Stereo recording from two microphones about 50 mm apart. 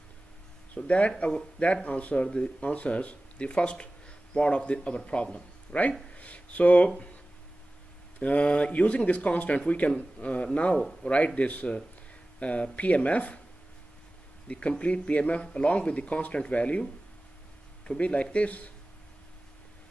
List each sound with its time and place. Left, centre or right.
0.7 s speech: left
8.2 s speech: left
14.5 s speech: left
17.8 s speech: left